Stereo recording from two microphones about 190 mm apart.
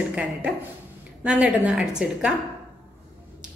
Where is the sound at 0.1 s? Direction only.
5° right (ahead or behind).